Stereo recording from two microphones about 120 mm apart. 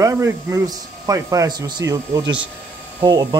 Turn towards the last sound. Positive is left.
turn(degrees=-35)  # may be behind; listen again after turning